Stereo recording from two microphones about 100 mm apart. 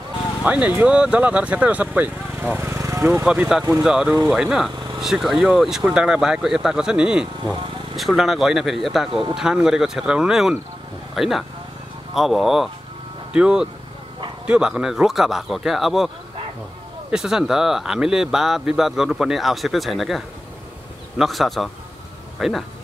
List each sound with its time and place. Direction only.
0.4 s speech: 10° right (ahead or behind)
2.6 s vehicle: 30° right (ahead or behind)
3.3 s speech: 5° right (ahead or behind)
17.1 s speech: 5° right (ahead or behind)